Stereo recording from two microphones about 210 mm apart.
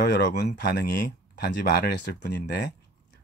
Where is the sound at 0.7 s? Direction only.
50° left (ahead or behind).